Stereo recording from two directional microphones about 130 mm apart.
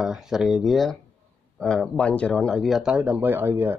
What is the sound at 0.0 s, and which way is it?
Speech, 5° right (ahead or behind).